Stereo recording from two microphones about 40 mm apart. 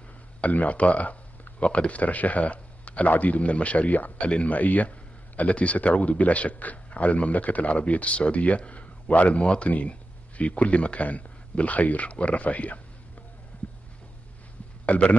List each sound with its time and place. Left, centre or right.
0.4 s speech: left
4.2 s speech: left
13.5 s a sound: left
14.9 s speech: left